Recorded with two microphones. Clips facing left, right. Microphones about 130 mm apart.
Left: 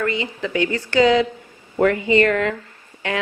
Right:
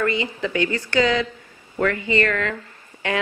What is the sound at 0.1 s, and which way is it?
Speech, 20° left (ahead or behind).